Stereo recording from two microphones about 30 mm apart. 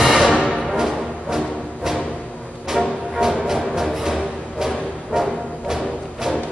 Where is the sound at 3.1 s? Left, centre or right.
Centre.